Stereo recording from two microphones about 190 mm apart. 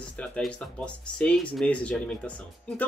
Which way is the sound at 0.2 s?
5° left (ahead or behind).